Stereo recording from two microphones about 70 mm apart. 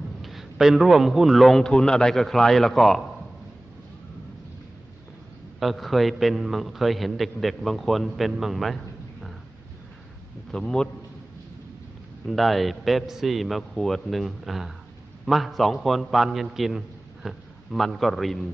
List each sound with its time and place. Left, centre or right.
0.2 s a man's voice: centre
5.6 s a man's voice: centre
10.5 s a man's voice: centre
12.3 s a man's voice: centre